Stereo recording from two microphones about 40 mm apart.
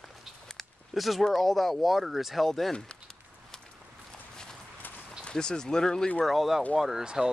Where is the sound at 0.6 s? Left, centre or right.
Centre.